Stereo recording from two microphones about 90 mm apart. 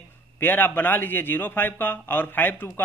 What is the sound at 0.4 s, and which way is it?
Speech, 20° left (ahead or behind).